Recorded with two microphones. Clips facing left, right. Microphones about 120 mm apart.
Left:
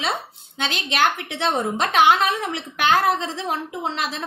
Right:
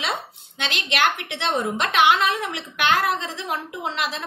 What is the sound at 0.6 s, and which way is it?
A woman's voice, 35° left (ahead or behind).